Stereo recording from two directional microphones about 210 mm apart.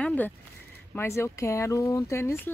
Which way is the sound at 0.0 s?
10° left (ahead or behind).